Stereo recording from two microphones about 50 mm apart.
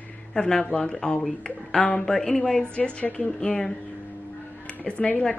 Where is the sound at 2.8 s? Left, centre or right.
Left.